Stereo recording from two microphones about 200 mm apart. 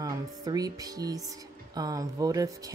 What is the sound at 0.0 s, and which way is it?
A woman's voice, 20° right (ahead or behind).